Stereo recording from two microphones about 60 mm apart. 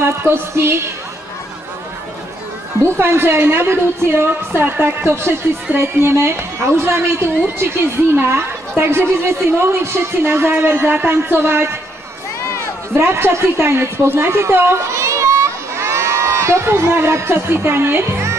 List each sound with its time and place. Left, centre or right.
0.0 s a woman's voice: right
3.0 s a woman's voice: right
13.0 s a woman's voice: right
15.0 s crowd: right